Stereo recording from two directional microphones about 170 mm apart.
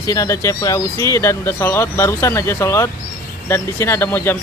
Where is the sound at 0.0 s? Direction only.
20° left (ahead or behind).